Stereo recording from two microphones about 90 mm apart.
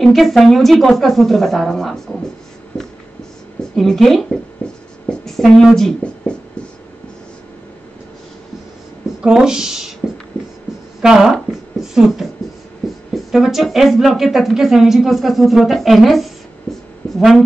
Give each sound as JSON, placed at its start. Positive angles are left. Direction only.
{"t": 0.0, "sound": "speech", "side_deg": 0}
{"t": 3.7, "sound": "speech", "side_deg": 5}
{"t": 4.6, "sound": "writing", "side_deg": 10}
{"t": 5.2, "sound": "speech", "side_deg": 0}
{"t": 9.2, "sound": "speech", "side_deg": -5}
{"t": 10.3, "sound": "music", "side_deg": 20}
{"t": 11.0, "sound": "speech", "side_deg": -5}
{"t": 17.0, "sound": "a sound", "side_deg": 10}